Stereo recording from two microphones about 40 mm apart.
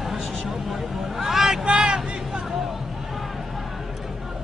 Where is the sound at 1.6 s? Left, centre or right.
Right.